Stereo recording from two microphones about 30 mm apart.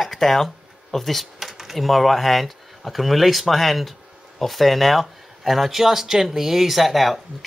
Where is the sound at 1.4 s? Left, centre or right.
Centre.